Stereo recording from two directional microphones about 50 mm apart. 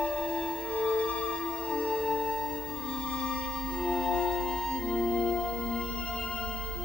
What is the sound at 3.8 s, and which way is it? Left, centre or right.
Music, centre.